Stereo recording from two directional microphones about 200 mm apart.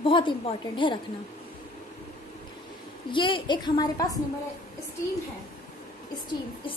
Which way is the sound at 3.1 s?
25° left (ahead or behind).